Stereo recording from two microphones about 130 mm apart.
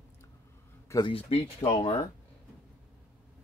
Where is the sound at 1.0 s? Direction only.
50° left (ahead or behind).